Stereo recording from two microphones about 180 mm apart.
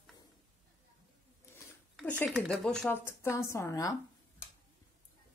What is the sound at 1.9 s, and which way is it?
A woman's voice, 5° left (ahead or behind).